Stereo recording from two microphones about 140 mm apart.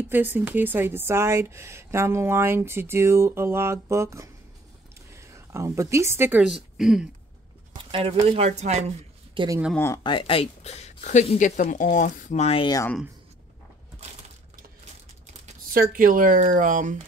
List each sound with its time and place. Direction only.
0.1 s a woman's voice: 15° right (ahead or behind)
6.4 s speech: 5° right (ahead or behind)
7.7 s speech: 40° right (ahead or behind)
10.0 s speech: 40° left (ahead or behind); by 12.4 s 65° left (ahead or behind)
12.4 s speech: 40° left (ahead or behind)
15.7 s speech: 85° right; by 17.0 s 65° right (ahead or behind)